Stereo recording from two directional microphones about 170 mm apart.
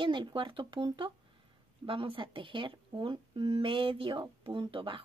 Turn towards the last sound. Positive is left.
turn(degrees=-30)  # may be behind; listen again after turning